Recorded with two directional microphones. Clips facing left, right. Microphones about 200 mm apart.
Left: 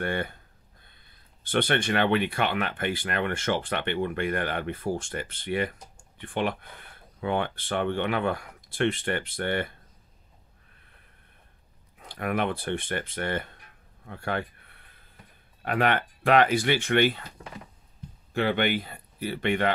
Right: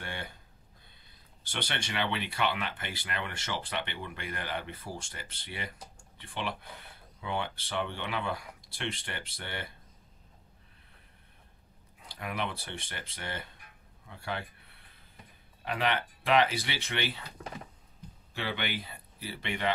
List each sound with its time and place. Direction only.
0.0 s speech: 55° left (ahead or behind)
1.4 s speech: 55° left (ahead or behind)
12.0 s speech: 55° left (ahead or behind)
18.3 s speech: 55° left (ahead or behind)